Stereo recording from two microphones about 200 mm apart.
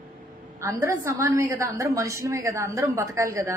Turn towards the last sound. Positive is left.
turn(degrees=-15)  # may be behind; listen again after turning